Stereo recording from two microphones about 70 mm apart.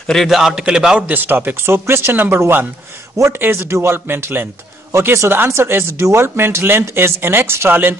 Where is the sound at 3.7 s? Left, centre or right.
Right.